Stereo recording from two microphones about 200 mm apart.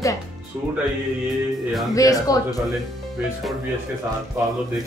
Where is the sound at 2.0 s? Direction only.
15° left (ahead or behind).